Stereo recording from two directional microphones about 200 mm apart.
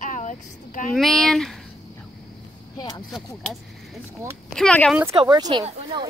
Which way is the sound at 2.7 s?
20° left (ahead or behind).